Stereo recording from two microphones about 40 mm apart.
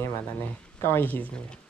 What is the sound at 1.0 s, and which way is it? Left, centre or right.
Speech, left.